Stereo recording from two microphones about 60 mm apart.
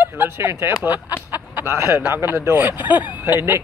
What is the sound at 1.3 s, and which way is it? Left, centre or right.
Chicken, right.